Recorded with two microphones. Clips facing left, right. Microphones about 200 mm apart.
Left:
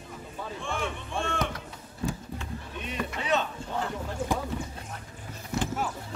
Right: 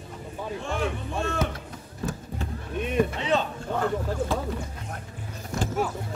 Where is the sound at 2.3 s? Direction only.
50° right (ahead or behind).